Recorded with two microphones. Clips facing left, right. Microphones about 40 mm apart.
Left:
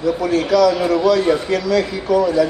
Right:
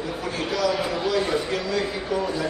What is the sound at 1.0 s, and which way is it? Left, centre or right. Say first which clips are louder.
A man's voice: left 8 dB; left.